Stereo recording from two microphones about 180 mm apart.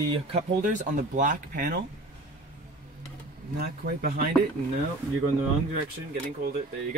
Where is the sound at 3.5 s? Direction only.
60° right (ahead or behind).